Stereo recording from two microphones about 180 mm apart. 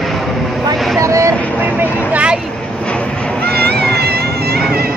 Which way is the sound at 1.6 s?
10° right (ahead or behind).